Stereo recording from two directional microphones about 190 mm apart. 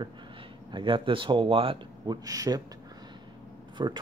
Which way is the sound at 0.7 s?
25° right (ahead or behind).